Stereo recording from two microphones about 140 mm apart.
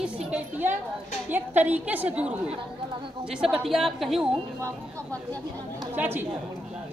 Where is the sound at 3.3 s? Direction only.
5° right (ahead or behind).